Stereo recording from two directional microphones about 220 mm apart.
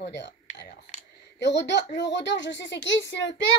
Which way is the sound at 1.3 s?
55° left (ahead or behind).